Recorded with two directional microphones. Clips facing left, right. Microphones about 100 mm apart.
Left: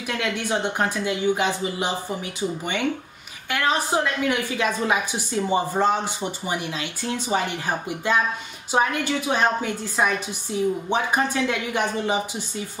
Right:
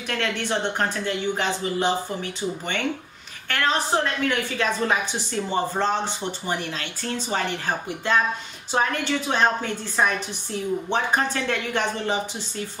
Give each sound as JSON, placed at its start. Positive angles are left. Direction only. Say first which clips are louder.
{"t": 0.2, "sound": "a woman's voice", "louder": "even", "side_deg": 10}
{"t": 3.4, "sound": "a woman's voice", "louder": "left 1 dB", "side_deg": 10}